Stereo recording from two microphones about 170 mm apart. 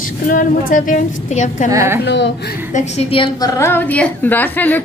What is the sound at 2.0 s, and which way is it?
Speech, 90° left.